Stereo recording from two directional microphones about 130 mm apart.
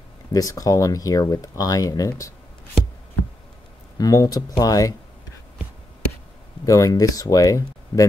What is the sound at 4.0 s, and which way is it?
Speech, 25° left (ahead or behind).